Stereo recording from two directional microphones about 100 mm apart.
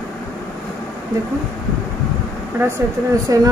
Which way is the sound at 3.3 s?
35° right (ahead or behind).